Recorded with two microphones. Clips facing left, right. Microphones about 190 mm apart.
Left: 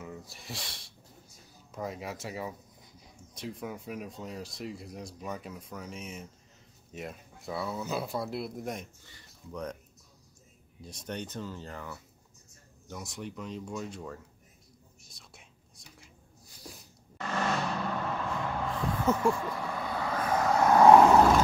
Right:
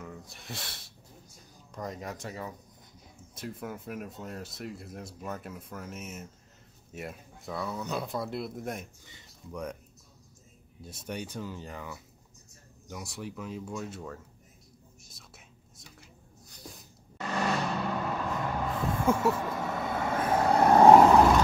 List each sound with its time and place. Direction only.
0.0 s a sound: centre (ahead or behind)
1.7 s speech: 5° left (ahead or behind)
3.3 s speech: centre (ahead or behind)
9.0 s speech: 10° right (ahead or behind)
10.8 s speech: 5° right (ahead or behind)
15.1 s whispering: centre (ahead or behind)
17.2 s vehicle: 10° right (ahead or behind)
19.0 s speech: 10° right (ahead or behind)
19.3 s vehicle: 20° right (ahead or behind)